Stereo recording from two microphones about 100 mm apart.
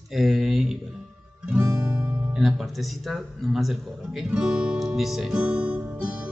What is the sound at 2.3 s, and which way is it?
A man's voice, centre (ahead or behind).